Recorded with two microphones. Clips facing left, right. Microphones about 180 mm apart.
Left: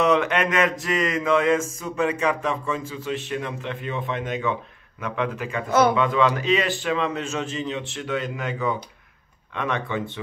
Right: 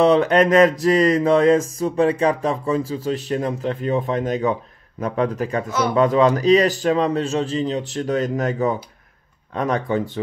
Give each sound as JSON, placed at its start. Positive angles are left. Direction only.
{"t": 0.0, "sound": "music", "side_deg": -35}
{"t": 5.7, "sound": "a man's voice", "side_deg": 55}
{"t": 5.9, "sound": "music", "side_deg": -40}